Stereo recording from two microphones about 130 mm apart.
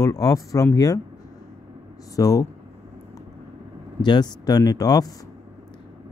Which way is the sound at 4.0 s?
35° left (ahead or behind).